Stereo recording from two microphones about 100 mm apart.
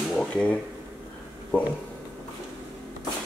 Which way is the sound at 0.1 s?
5° left (ahead or behind).